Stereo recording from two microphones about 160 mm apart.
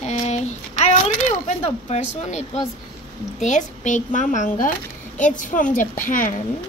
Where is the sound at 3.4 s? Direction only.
50° left (ahead or behind).